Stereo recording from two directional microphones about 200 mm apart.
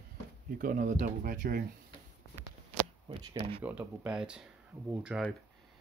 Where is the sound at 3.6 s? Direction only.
10° right (ahead or behind).